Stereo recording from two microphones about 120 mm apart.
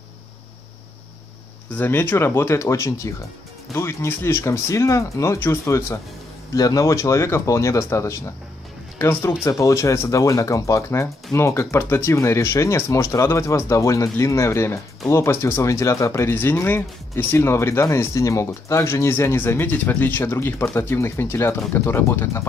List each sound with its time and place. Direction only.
1.8 s speech: 15° left (ahead or behind)